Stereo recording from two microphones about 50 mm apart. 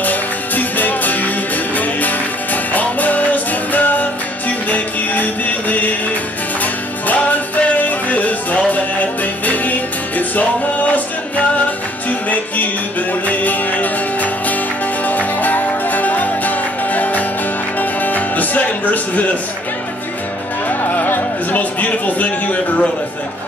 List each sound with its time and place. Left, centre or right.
0.0 s music: left
13.3 s music: left
20.6 s music: left